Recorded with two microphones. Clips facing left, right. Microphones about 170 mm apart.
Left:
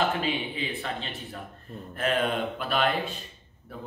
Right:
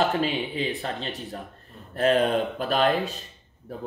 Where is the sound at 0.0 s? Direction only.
40° right (ahead or behind).